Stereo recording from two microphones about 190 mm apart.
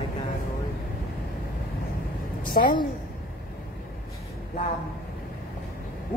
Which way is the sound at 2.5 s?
40° left (ahead or behind).